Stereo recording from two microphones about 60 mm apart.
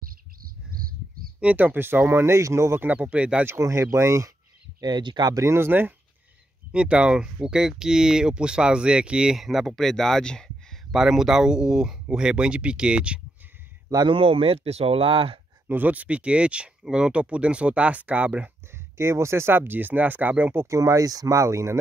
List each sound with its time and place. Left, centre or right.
1.4 s speech: right
2.8 s speech: right
3.4 s speech: right
4.7 s speech: right
5.5 s speech: right
6.7 s speech: centre
10.9 s speech: centre
13.9 s a man's voice: right
15.7 s speech: right
18.7 s speech: right
20.7 s speech: right